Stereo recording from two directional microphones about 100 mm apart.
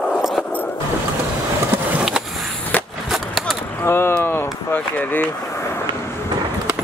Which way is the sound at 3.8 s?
25° left (ahead or behind).